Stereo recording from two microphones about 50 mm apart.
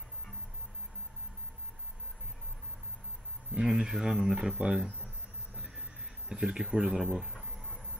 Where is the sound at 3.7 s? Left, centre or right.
Centre.